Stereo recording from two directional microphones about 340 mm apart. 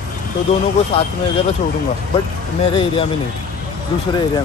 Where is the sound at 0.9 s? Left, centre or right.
Centre.